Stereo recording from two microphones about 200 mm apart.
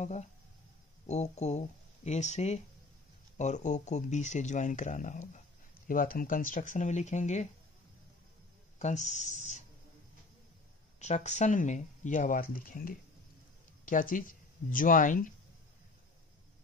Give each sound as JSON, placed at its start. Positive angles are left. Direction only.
{"t": 0.0, "sound": "speech", "side_deg": 35}
{"t": 8.7, "sound": "a sound", "side_deg": 35}
{"t": 11.0, "sound": "speech", "side_deg": 35}